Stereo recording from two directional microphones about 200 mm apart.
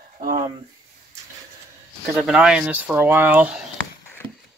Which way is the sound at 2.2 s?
5° right (ahead or behind).